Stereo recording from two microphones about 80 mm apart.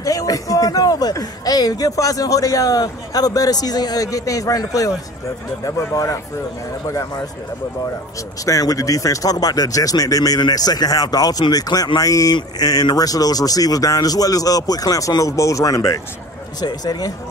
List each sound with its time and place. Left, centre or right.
0.0 s speech: left
8.5 s speech: left